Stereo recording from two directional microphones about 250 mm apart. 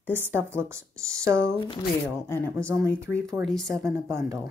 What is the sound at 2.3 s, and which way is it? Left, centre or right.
Speech, centre.